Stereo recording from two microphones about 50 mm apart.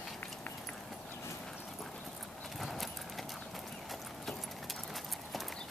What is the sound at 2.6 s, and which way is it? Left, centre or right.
Horse, centre.